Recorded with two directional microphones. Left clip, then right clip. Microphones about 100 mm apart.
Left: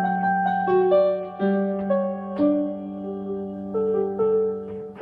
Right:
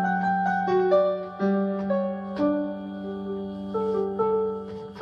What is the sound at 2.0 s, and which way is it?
Music, 40° left (ahead or behind).